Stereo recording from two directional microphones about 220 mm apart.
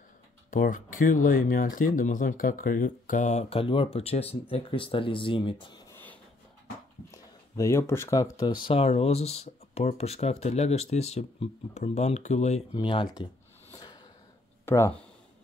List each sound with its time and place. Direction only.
0.5 s speech: 40° left (ahead or behind); by 8.5 s 15° left (ahead or behind)
8.6 s speech: 25° left (ahead or behind)
12.7 s a sound: 20° left (ahead or behind)